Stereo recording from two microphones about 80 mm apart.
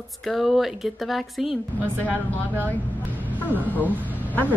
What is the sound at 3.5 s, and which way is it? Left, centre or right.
Speech, right.